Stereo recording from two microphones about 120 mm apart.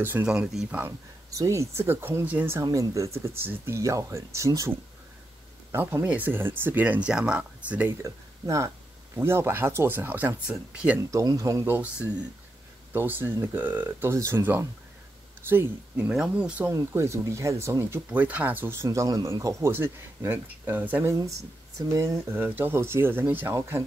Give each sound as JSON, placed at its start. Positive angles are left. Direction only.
{"t": 0.0, "sound": "speech", "side_deg": -15}
{"t": 0.3, "sound": "speech", "side_deg": -5}
{"t": 0.7, "sound": "speech", "side_deg": -15}
{"t": 1.3, "sound": "speech", "side_deg": -25}
{"t": 2.6, "sound": "speech", "side_deg": -30}
{"t": 8.0, "sound": "speech", "side_deg": -25}
{"t": 11.0, "sound": "speech", "side_deg": -25}
{"t": 11.6, "sound": "speech", "side_deg": -15}
{"t": 16.1, "sound": "speech", "side_deg": -10}
{"t": 16.7, "sound": "speech", "side_deg": -25}
{"t": 21.7, "sound": "speech", "side_deg": -25}